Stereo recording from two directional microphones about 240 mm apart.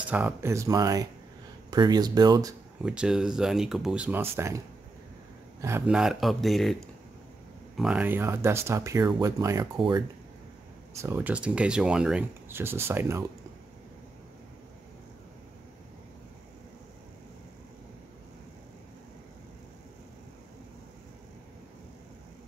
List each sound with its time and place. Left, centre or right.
0.1 s speech: centre
2.8 s speech: centre